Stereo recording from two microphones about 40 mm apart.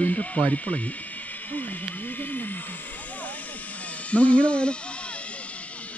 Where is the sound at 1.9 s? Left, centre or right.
Left.